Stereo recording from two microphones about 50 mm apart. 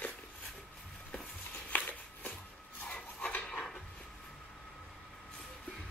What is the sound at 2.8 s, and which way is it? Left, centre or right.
Filing, left.